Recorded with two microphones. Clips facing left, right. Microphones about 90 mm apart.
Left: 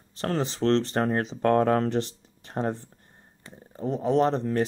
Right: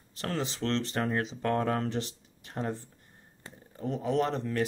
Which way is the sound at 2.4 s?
35° left (ahead or behind).